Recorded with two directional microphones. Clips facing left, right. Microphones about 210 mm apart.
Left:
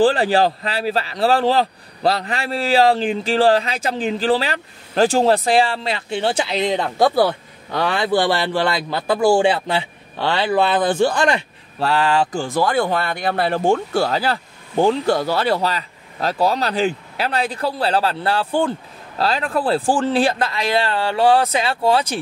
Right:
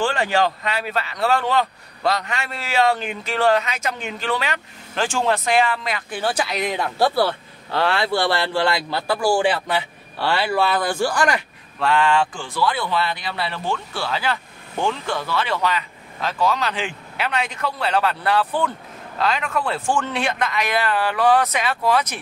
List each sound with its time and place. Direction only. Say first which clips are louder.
0.0 s speech: left 5 dB; 35° left (ahead or behind)